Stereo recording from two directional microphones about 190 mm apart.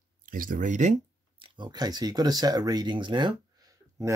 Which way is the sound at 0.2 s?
45° right (ahead or behind).